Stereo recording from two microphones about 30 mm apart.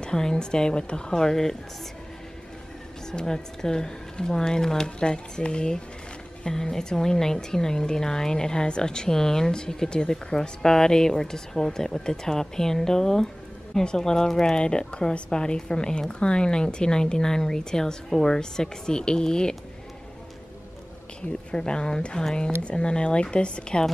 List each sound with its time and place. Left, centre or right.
0.0 s a woman's voice: left
1.2 s speech: centre
3.1 s a woman's voice: left
6.4 s a woman's voice: centre
10.6 s speech: centre
14.6 s a woman's voice: left
21.5 s a woman's voice: left